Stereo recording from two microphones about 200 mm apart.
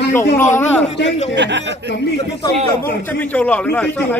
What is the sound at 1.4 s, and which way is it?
Speech, 60° right (ahead or behind).